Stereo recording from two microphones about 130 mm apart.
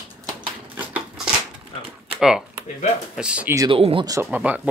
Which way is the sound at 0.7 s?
10° right (ahead or behind).